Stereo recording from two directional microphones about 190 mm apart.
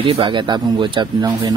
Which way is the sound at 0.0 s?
25° right (ahead or behind).